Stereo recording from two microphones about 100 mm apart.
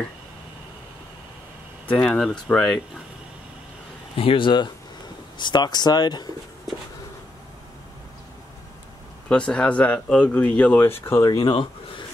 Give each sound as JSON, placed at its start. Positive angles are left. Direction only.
{"t": 1.9, "sound": "speech", "side_deg": 10}
{"t": 4.2, "sound": "speech", "side_deg": 60}
{"t": 9.3, "sound": "speech", "side_deg": 10}
{"t": 10.8, "sound": "speech", "side_deg": 25}
{"t": 11.2, "sound": "speech", "side_deg": 45}